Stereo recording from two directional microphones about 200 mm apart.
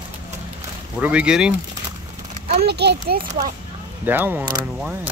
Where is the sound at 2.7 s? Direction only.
55° right (ahead or behind).